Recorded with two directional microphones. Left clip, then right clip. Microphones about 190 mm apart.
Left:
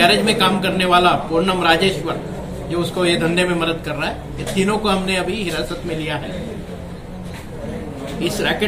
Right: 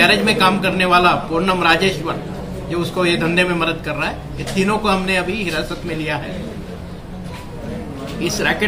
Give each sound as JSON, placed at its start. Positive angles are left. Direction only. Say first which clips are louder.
{"t": 0.0, "sound": "a man's voice", "louder": "right 1 dB", "side_deg": -10}
{"t": 8.4, "sound": "a man's voice", "louder": "right 2 dB", "side_deg": -10}